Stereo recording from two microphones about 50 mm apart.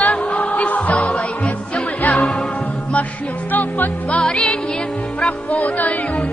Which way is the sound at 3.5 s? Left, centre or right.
Left.